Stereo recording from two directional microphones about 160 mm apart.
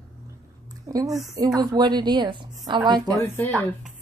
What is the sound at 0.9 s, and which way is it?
Speech, 20° right (ahead or behind).